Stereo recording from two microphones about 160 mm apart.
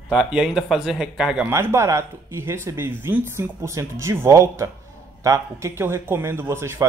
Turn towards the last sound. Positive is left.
turn(degrees=-15)  # may be behind; listen again after turning